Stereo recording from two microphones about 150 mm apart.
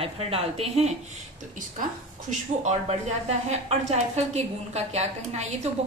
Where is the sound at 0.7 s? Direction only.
55° right (ahead or behind).